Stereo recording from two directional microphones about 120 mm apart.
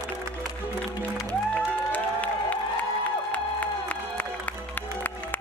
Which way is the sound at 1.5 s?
15° left (ahead or behind).